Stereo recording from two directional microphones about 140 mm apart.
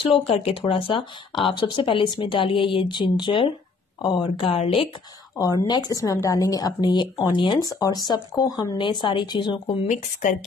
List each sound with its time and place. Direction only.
0.3 s speech: 40° left (ahead or behind)
5.4 s speech: 30° left (ahead or behind)